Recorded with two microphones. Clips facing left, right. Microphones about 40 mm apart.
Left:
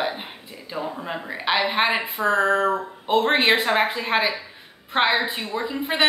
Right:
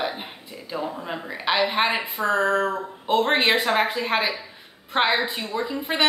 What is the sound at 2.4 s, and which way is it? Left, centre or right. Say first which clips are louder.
A woman's voice: left 3 dB; centre.